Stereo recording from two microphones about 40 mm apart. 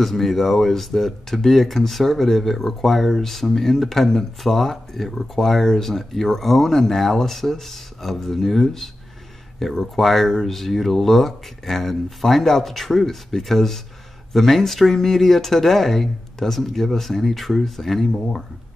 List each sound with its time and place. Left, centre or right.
0.0 s speech: centre